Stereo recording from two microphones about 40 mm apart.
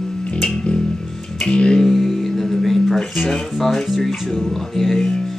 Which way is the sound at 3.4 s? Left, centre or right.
Centre.